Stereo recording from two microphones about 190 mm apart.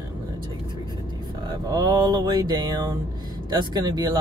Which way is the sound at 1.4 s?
20° right (ahead or behind).